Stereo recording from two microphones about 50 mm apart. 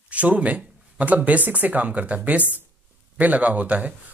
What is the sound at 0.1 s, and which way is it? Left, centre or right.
Speech, right.